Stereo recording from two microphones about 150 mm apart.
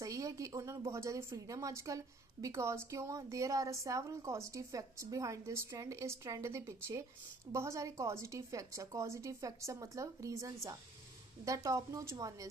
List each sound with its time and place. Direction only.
0.0 s a woman's voice: 20° right (ahead or behind)